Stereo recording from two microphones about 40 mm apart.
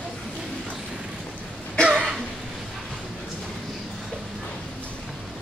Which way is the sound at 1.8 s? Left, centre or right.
Left.